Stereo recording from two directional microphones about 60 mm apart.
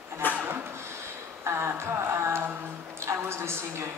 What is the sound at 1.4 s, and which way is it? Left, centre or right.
Speech, right.